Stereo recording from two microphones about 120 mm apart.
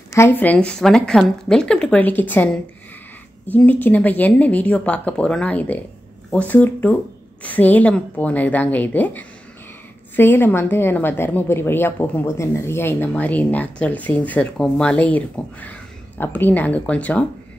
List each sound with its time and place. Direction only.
0.1 s a woman's voice: 20° left (ahead or behind)